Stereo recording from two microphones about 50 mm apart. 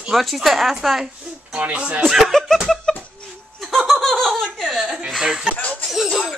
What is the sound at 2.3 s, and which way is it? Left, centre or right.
Laughter, centre.